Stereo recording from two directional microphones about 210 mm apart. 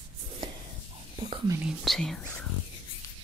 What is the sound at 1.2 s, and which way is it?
Whispering, 20° right (ahead or behind).